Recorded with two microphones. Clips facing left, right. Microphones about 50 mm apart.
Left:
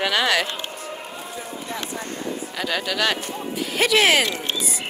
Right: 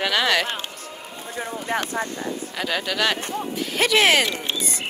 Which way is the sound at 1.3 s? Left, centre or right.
Right.